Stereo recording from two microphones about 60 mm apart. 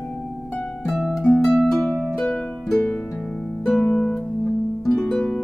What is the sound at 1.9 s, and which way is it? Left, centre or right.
Music, left.